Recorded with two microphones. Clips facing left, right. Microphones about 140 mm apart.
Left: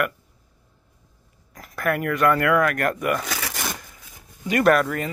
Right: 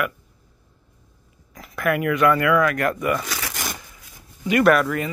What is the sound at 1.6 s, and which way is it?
Speech, 40° left (ahead or behind).